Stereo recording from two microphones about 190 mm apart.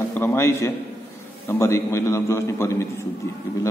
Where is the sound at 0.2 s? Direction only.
10° left (ahead or behind).